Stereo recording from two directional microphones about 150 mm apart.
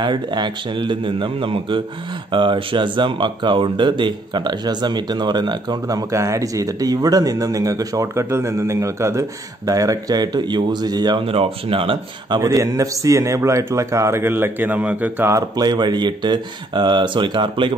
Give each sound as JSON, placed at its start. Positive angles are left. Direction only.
{"t": 0.0, "sound": "a man's voice", "side_deg": -30}
{"t": 12.4, "sound": "speech", "side_deg": -20}